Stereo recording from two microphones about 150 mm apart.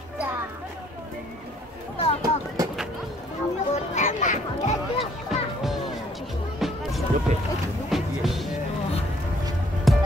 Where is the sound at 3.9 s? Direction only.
55° left (ahead or behind).